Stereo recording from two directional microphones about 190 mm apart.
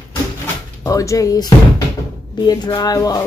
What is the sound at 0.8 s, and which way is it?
Speech, 15° left (ahead or behind).